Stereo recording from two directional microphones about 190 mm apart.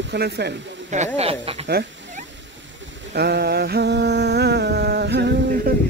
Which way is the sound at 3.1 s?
55° right (ahead or behind).